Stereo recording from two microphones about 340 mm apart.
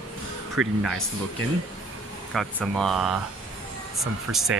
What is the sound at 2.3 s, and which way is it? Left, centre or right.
Speech, centre.